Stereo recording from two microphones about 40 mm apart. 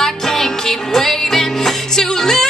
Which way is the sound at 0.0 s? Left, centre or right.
Centre.